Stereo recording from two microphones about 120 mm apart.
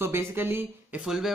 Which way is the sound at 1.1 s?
5° right (ahead or behind).